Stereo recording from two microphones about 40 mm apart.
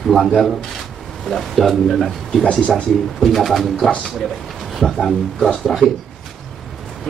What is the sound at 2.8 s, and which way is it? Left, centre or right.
A man's voice, centre.